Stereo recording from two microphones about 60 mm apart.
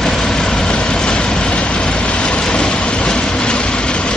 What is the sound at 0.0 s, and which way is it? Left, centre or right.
Vehicle, centre.